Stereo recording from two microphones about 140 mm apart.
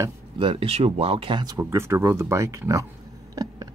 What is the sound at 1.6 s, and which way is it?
Speech, 20° right (ahead or behind).